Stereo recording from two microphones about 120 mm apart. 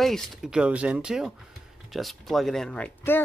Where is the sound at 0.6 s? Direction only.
10° right (ahead or behind).